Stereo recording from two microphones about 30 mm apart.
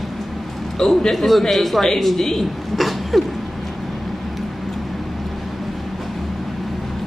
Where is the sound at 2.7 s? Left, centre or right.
Centre.